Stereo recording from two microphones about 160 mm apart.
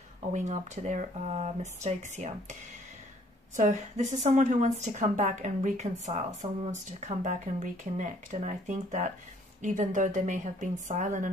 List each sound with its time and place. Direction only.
0.3 s a woman's voice: 50° right (ahead or behind)
3.5 s a woman's voice: 50° right (ahead or behind)